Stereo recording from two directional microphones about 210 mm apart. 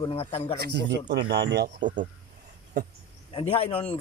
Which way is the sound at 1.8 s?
35° right (ahead or behind).